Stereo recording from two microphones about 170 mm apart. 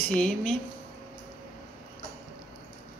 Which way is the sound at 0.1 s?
5° left (ahead or behind).